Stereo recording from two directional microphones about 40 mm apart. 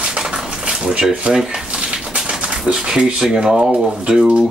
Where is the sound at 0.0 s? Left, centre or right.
Centre.